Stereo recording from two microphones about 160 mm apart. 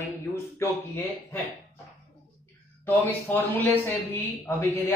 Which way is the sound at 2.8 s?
10° left (ahead or behind).